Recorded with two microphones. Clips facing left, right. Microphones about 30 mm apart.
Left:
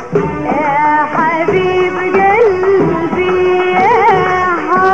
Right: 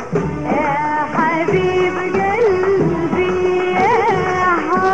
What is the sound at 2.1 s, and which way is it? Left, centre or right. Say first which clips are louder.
Music: left 8 dB; left.